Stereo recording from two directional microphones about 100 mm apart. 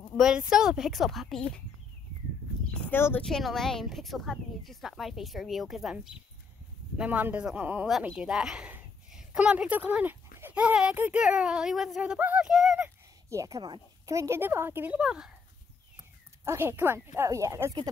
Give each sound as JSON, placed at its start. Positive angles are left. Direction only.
{"t": 0.2, "sound": "speech", "side_deg": -10}
{"t": 2.9, "sound": "speech", "side_deg": 20}
{"t": 3.2, "sound": "speech", "side_deg": 5}
{"t": 7.0, "sound": "a child's voice", "side_deg": -15}
{"t": 12.0, "sound": "a child's voice", "side_deg": -15}
{"t": 13.3, "sound": "a woman's voice", "side_deg": -35}
{"t": 15.0, "sound": "speech", "side_deg": -5}
{"t": 16.4, "sound": "speech", "side_deg": -25}